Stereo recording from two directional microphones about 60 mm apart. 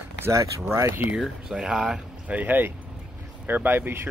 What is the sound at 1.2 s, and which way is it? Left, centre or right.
Speech, centre.